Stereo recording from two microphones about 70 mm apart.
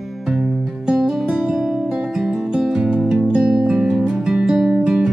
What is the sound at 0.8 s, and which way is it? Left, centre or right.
Music, centre.